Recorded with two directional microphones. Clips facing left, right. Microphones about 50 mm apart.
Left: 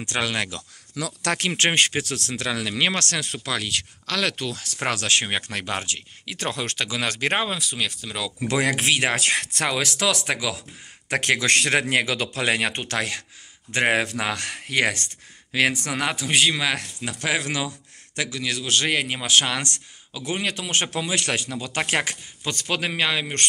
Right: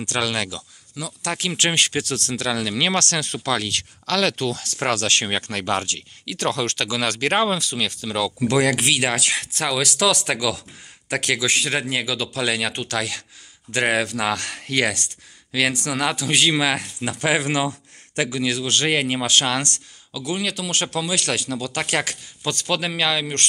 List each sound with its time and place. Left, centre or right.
0.0 s speech: left
0.9 s speech: left
1.5 s speech: left; by 8.5 s centre
8.5 s speech: left
11.1 s speech: left
11.3 s speech: left
12.4 s speech: left; by 16.4 s centre
16.5 s speech: centre
18.4 s a man's voice: centre
19.2 s speech: centre